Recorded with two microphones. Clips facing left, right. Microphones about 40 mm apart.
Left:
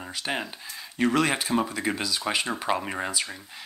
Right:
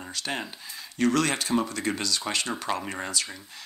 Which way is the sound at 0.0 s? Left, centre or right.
Centre.